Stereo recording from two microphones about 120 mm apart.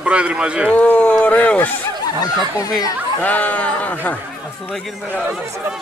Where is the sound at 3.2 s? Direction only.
15° left (ahead or behind).